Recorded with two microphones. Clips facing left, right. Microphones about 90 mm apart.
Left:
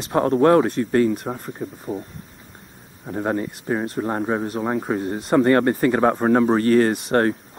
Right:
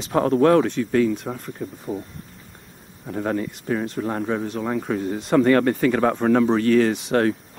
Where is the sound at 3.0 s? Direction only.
20° left (ahead or behind).